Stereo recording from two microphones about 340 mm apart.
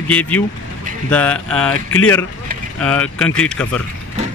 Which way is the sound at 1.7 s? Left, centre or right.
Left.